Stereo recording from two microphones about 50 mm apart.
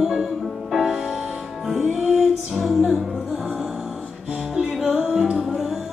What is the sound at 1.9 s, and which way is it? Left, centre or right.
Music, centre.